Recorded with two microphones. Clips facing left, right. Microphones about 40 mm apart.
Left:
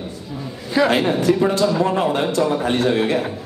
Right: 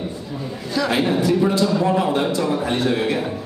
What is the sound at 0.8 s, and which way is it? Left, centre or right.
A man's voice, left.